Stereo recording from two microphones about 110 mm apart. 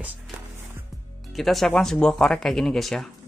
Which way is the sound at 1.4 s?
Centre (ahead or behind).